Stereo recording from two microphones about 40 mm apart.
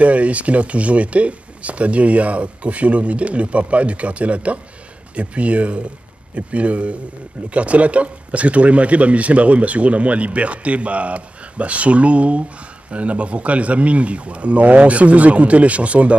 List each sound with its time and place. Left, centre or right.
0.0 s speech: right